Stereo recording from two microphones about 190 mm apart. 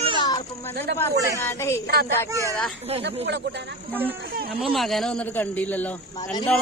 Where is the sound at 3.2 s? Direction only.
65° right (ahead or behind).